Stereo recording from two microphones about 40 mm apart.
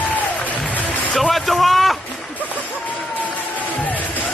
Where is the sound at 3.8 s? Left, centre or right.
Left.